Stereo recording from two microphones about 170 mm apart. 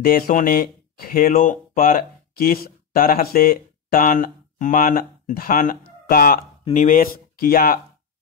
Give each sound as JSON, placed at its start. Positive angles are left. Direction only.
{"t": 0.0, "sound": "speech", "side_deg": 60}
{"t": 6.6, "sound": "speech", "side_deg": 45}